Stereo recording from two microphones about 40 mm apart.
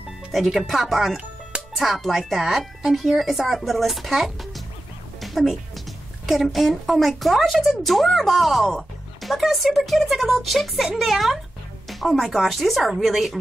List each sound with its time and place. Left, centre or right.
0.3 s speech: centre